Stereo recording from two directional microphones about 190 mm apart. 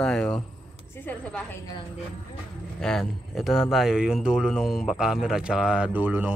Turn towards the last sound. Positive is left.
turn(degrees=-10)  # may be behind; listen again after turning